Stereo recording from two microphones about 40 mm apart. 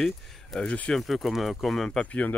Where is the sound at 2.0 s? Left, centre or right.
Left.